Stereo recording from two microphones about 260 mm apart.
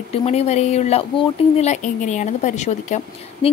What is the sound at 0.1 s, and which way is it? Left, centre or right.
Speech, left.